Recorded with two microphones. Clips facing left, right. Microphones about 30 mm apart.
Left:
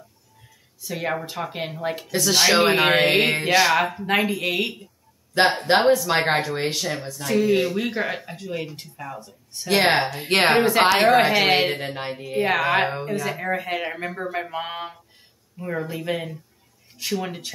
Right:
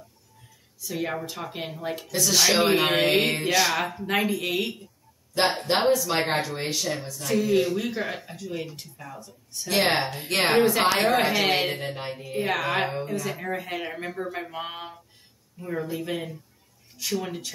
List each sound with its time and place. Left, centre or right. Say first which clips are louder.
0.8 s speech: left 3 dB; centre